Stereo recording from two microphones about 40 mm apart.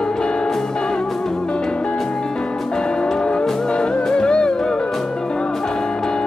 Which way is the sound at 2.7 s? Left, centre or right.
Left.